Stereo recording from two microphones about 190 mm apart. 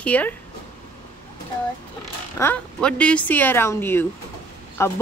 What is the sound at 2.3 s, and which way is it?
Speech, 10° left (ahead or behind).